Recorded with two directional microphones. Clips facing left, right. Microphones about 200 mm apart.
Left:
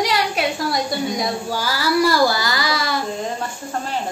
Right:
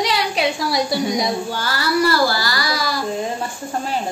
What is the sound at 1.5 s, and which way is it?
Child singing, 10° left (ahead or behind).